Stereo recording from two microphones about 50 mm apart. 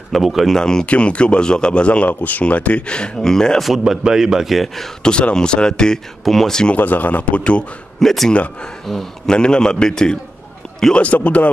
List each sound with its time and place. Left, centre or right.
0.1 s speech: centre
0.6 s a man's voice: centre
3.2 s a man's voice: centre
3.6 s a man's voice: centre
5.0 s a man's voice: centre
6.7 s speech: left
8.0 s a man's voice: centre
11.0 s speech: left